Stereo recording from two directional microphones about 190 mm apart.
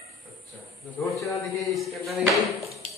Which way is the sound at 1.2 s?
15° left (ahead or behind).